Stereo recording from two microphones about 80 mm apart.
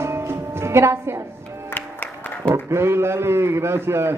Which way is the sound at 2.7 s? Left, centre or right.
Right.